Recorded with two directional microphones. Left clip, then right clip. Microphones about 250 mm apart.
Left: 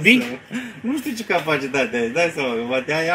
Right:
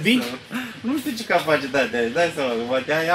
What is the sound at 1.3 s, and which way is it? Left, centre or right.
Speech, left.